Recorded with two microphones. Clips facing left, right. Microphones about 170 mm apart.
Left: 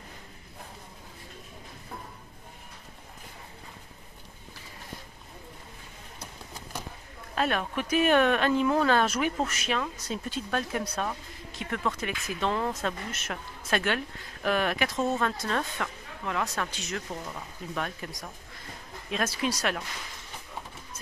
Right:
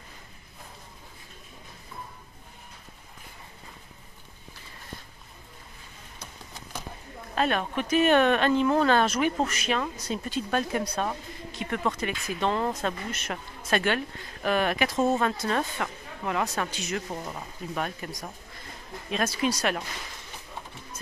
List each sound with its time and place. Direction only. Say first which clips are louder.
7.3 s speech: right 2 dB; 5° left (ahead or behind)
17.1 s speech: right 2 dB; 20° right (ahead or behind)
17.7 s speech: right 2 dB; 10° right (ahead or behind)